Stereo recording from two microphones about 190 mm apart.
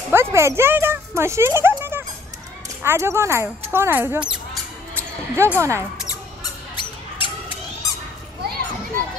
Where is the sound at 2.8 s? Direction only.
10° right (ahead or behind).